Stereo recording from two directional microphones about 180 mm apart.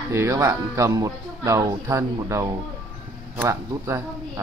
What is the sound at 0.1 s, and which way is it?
Speech, 15° right (ahead or behind).